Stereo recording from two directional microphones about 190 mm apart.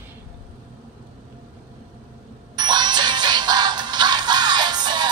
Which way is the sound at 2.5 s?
20° right (ahead or behind).